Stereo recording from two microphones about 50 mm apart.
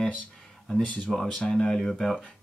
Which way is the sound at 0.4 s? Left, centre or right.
Centre.